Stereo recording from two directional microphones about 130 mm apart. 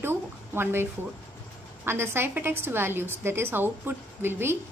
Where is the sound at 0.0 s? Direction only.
20° right (ahead or behind).